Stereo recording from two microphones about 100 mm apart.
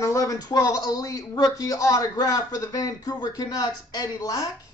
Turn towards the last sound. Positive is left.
turn(degrees=35)  # may be behind; listen again after turning